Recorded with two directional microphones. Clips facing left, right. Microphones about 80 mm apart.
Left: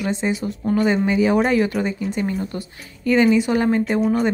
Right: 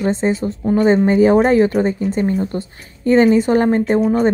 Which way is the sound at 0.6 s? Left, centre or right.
Centre.